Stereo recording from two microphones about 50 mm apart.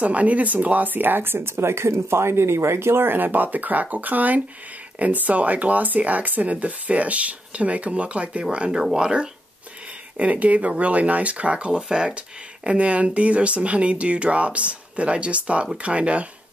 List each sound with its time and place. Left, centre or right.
0.0 s speech: right